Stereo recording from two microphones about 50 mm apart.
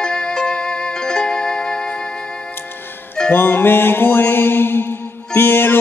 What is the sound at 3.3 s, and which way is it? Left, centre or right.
Music, left.